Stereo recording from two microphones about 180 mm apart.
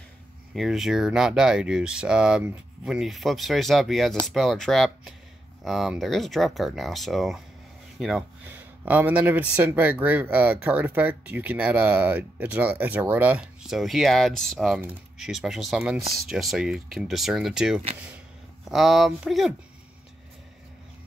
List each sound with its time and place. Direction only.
0.6 s speech: centre (ahead or behind)